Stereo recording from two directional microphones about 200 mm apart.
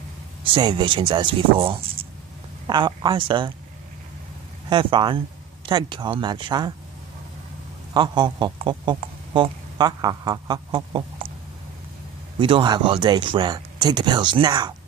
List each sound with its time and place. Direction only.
0.4 s speech: 25° right (ahead or behind)
4.6 s speech: 25° right (ahead or behind)
7.9 s speech: 20° right (ahead or behind)
12.4 s speech: 25° right (ahead or behind)